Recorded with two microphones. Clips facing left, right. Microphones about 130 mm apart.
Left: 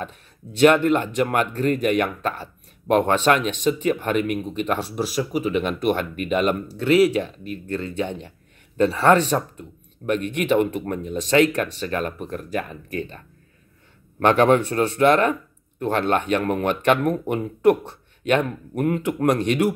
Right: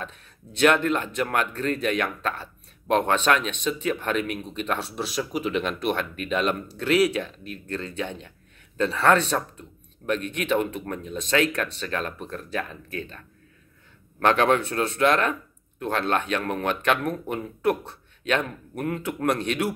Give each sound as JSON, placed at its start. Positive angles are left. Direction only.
{"t": 0.7, "sound": "speech", "side_deg": 10}
{"t": 14.2, "sound": "speech", "side_deg": 15}